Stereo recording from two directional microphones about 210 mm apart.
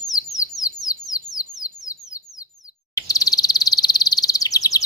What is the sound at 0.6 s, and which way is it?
Bird, 15° left (ahead or behind).